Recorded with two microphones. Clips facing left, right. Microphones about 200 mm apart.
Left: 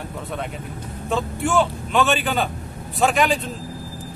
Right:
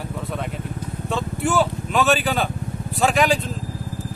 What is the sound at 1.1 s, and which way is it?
Speech, centre (ahead or behind).